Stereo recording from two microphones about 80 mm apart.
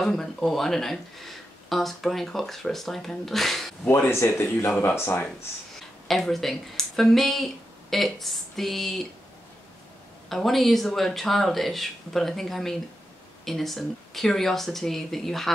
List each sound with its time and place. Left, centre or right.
0.0 s speech: centre
3.9 s speech: left
5.8 s speech: centre
10.3 s speech: centre